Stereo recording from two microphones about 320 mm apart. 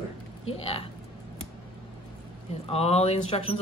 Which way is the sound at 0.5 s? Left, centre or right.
Centre.